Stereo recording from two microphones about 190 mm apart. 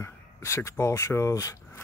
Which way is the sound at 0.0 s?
15° left (ahead or behind).